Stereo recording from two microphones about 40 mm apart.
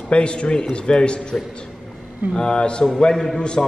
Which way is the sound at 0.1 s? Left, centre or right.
Left.